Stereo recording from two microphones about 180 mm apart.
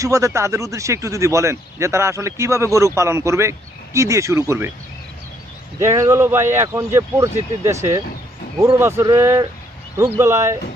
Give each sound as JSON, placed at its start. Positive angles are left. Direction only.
{"t": 0.0, "sound": "speech", "side_deg": -15}
{"t": 5.8, "sound": "speech", "side_deg": -15}